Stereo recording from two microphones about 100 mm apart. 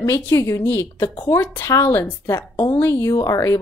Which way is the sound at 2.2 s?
40° left (ahead or behind).